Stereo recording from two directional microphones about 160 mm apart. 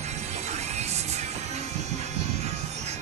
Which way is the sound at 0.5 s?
45° right (ahead or behind).